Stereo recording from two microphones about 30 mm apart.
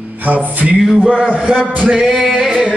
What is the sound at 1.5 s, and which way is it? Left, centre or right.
Speech, right.